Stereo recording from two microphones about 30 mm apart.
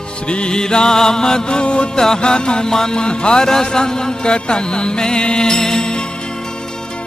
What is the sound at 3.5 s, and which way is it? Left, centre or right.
Music, centre.